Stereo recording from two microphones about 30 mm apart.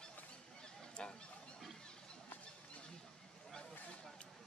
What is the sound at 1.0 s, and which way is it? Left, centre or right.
Fowl, left.